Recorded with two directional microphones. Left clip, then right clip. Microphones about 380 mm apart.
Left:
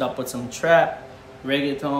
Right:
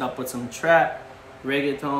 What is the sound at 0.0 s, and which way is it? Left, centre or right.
Speech, centre.